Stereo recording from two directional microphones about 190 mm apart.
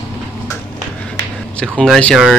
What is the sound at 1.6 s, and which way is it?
Speech, 5° left (ahead or behind).